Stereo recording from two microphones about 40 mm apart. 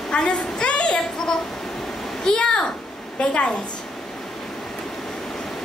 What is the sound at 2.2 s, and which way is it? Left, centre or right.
A woman's voice, left.